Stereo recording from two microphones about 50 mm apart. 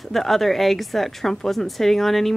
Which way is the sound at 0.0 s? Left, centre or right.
Centre.